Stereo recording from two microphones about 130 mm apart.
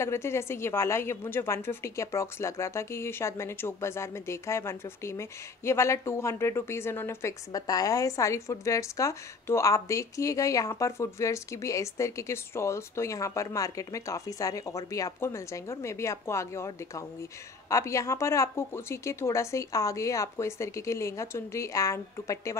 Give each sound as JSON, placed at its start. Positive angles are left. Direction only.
{"t": 0.0, "sound": "a woman's voice", "side_deg": 20}